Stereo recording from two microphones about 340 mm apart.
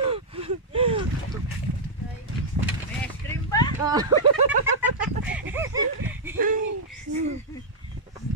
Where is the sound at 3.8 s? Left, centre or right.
Centre.